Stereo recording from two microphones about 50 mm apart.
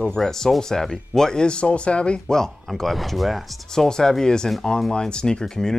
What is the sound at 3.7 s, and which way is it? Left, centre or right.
Speech, centre.